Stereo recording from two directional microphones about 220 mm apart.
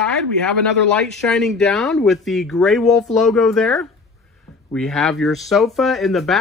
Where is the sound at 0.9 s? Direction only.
5° left (ahead or behind).